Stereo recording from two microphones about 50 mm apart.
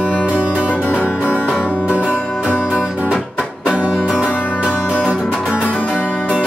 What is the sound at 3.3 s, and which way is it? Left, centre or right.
Music, right.